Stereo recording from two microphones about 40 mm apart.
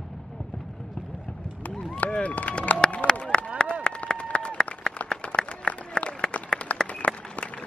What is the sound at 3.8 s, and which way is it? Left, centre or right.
Run, left.